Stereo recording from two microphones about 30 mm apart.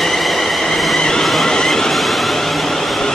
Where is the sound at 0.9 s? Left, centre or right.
Left.